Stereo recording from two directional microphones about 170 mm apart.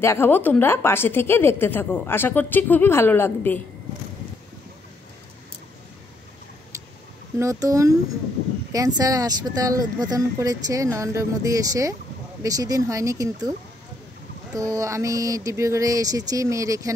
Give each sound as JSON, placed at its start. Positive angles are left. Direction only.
{"t": 0.0, "sound": "a woman's voice", "side_deg": 15}
{"t": 7.3, "sound": "speech", "side_deg": -20}
{"t": 14.5, "sound": "speech", "side_deg": -20}